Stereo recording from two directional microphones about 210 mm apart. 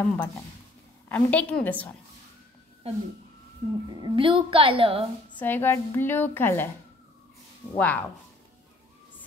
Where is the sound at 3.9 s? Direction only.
20° right (ahead or behind).